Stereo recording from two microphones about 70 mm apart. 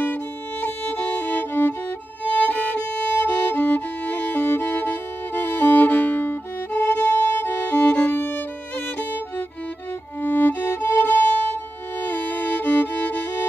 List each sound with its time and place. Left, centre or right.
0.0 s music: left
2.2 s violin: left
3.2 s music: left
10.2 s music: left